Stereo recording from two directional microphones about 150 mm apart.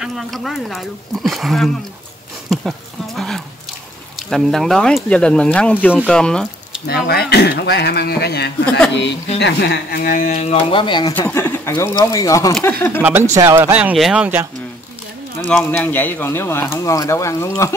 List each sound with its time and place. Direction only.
0.0 s speech: centre (ahead or behind)
3.2 s a sound: centre (ahead or behind)
4.2 s speech: centre (ahead or behind)
6.9 s speech: 90° left
8.6 s speech: 5° left (ahead or behind)
9.6 s speech: 85° left; by 11.1 s 30° left (ahead or behind)
11.1 s speech: 15° left (ahead or behind)
13.0 s speech: 15° right (ahead or behind)
15.5 s speech: 10° left (ahead or behind)